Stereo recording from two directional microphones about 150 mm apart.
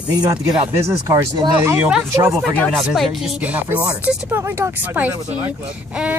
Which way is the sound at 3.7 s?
15° right (ahead or behind).